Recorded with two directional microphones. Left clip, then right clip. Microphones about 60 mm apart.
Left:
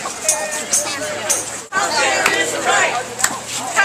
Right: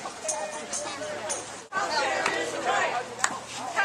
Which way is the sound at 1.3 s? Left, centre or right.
Centre.